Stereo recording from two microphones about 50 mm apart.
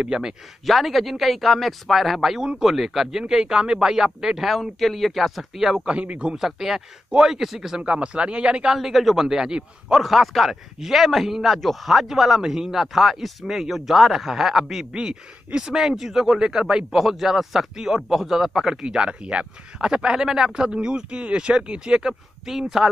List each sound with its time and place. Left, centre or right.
0.0 s a man's voice: centre
0.7 s a man's voice: centre
4.5 s a man's voice: centre
5.9 s a man's voice: right
6.3 s a man's voice: centre
7.8 s a man's voice: right
8.7 s a man's voice: centre
14.9 s a man's voice: centre